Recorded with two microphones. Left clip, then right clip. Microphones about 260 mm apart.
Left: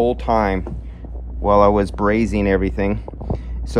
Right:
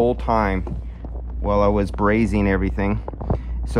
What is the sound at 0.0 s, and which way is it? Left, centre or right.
Speech, centre.